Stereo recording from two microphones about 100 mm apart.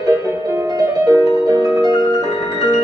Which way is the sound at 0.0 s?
30° right (ahead or behind).